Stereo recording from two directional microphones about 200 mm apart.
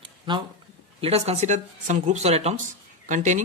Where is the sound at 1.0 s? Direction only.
30° right (ahead or behind).